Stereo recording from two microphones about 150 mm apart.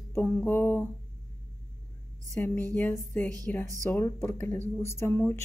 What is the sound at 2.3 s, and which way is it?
Speech, 15° left (ahead or behind).